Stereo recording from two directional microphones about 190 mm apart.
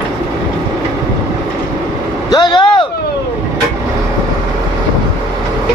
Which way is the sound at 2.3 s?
25° left (ahead or behind).